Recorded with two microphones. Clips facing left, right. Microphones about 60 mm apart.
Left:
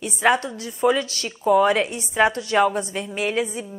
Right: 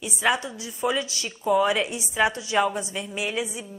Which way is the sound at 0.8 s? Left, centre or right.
Left.